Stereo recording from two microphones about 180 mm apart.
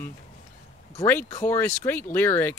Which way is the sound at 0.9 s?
15° left (ahead or behind).